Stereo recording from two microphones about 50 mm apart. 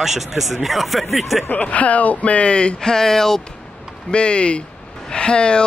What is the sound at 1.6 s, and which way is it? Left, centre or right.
Speech, left.